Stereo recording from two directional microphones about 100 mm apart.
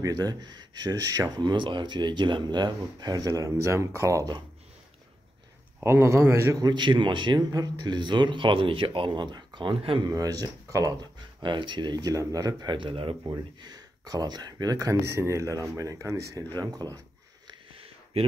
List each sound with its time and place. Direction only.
0.0 s speech: 40° right (ahead or behind)
5.8 s a man's voice: 25° right (ahead or behind)
6.5 s speech: 45° right (ahead or behind)
7.5 s speech: 45° right (ahead or behind); by 10.0 s 60° right (ahead or behind)
10.0 s speech: 40° right (ahead or behind)
11.4 s speech: 50° right (ahead or behind)
13.3 s speech: 45° right (ahead or behind)
16.5 s speech: 40° right (ahead or behind)
17.7 s a sound: 70° right (ahead or behind)